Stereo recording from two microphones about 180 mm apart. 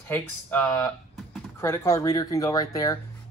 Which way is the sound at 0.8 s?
Centre (ahead or behind).